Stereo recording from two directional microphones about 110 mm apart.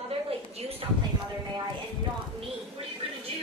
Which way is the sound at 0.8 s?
50° right (ahead or behind).